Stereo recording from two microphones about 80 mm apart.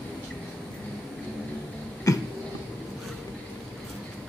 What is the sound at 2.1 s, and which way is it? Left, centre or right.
Cough, left.